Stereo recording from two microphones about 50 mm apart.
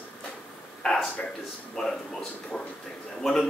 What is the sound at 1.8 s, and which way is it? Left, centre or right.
Speech, centre.